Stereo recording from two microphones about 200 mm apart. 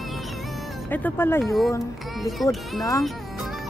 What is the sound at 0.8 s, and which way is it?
Speech, 10° left (ahead or behind).